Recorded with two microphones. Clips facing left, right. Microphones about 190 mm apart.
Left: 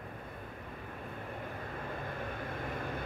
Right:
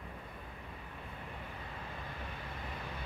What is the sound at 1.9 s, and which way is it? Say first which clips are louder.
Vehicle: left 6 dB; 50° left (ahead or behind).